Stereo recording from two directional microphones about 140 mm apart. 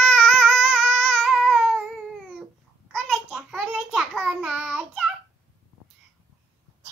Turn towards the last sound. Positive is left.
turn(degrees=-5)  # may be behind; listen again after turning